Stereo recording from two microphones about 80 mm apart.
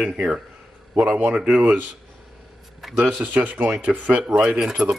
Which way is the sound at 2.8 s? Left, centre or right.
Centre.